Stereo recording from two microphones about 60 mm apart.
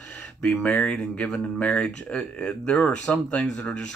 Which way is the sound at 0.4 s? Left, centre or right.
Centre.